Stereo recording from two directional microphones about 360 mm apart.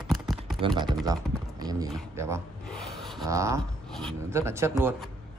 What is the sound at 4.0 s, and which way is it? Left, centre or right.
Speech, centre.